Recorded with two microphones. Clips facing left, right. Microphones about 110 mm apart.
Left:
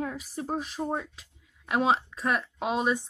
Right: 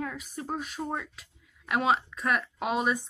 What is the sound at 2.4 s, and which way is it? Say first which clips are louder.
Speech: even; centre (ahead or behind).